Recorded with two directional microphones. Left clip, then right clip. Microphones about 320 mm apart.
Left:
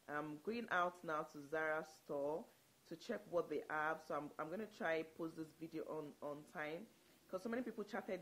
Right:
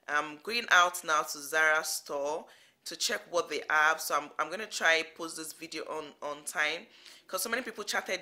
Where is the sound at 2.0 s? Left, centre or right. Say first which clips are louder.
Right 10 dB; centre.